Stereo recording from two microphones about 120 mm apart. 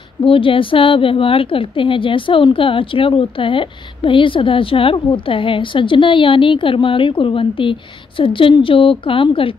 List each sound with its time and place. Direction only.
0.2 s a woman's voice: 50° left (ahead or behind)